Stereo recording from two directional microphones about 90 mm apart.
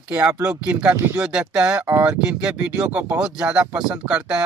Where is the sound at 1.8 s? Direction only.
25° right (ahead or behind).